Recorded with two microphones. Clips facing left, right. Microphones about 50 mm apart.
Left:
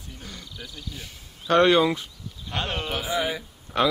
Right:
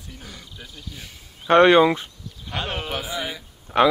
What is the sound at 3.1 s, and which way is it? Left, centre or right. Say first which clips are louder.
Speech: left 4 dB; centre.